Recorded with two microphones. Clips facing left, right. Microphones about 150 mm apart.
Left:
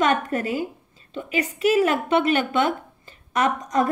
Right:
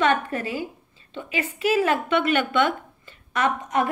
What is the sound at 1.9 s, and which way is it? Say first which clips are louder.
Speech: left 1 dB; 35° left (ahead or behind).